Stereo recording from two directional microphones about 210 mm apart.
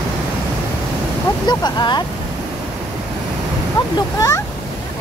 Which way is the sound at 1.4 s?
20° left (ahead or behind).